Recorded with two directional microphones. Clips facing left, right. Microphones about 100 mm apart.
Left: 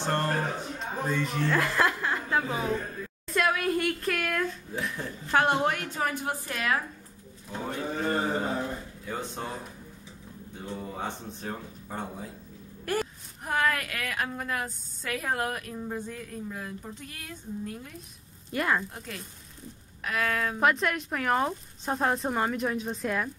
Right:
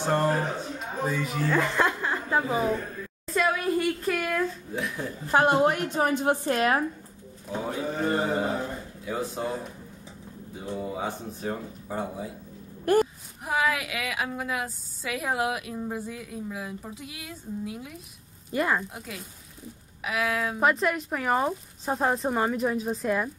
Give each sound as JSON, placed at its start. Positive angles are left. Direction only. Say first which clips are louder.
{"t": 0.0, "sound": "speech", "louder": "right 4 dB", "side_deg": -10}
{"t": 2.3, "sound": "mantra", "louder": "right 4 dB", "side_deg": -10}
{"t": 3.3, "sound": "speech", "louder": "right 1 dB", "side_deg": 0}
{"t": 5.6, "sound": "mantra", "louder": "right 5 dB", "side_deg": -15}
{"t": 5.9, "sound": "a woman's voice", "louder": "right 6 dB", "side_deg": -25}
{"t": 7.6, "sound": "mantra", "louder": "right 2 dB", "side_deg": -5}
{"t": 9.0, "sound": "speech", "louder": "right 6 dB", "side_deg": -5}
{"t": 10.7, "sound": "speech", "louder": "right 4 dB", "side_deg": -5}